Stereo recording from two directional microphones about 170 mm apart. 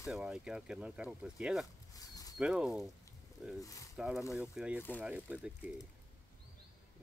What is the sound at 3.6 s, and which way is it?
Speech, 20° left (ahead or behind).